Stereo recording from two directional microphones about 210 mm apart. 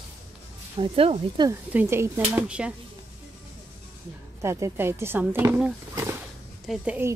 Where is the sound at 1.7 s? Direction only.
10° right (ahead or behind).